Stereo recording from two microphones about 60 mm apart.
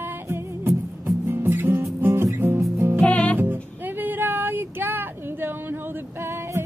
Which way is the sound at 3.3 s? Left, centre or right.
Right.